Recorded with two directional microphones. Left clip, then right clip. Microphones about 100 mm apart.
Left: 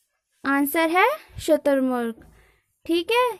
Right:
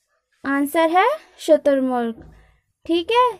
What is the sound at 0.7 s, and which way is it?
A woman's voice, 20° left (ahead or behind).